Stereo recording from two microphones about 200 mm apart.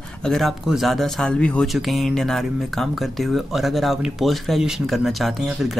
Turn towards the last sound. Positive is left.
turn(degrees=0)  # may be behind; listen again after turning